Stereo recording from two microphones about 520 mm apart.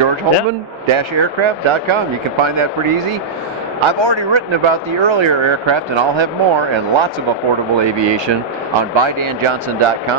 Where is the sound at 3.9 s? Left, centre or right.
Right.